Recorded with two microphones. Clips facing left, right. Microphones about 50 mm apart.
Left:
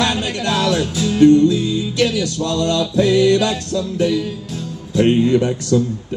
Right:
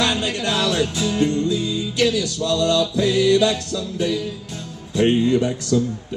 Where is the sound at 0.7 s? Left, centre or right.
Centre.